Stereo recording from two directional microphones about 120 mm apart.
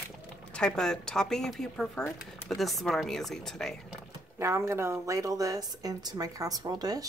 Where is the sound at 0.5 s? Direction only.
5° left (ahead or behind).